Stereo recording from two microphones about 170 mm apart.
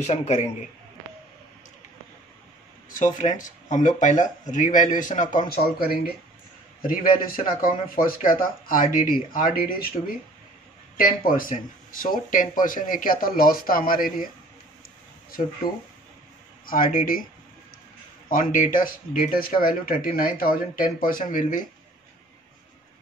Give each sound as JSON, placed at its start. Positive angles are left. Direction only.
{"t": 0.0, "sound": "a man's voice", "side_deg": 40}
{"t": 3.2, "sound": "speech", "side_deg": 50}
{"t": 5.5, "sound": "speech", "side_deg": 60}
{"t": 11.0, "sound": "speech", "side_deg": 55}
{"t": 15.6, "sound": "speech", "side_deg": 60}
{"t": 18.3, "sound": "speech", "side_deg": 50}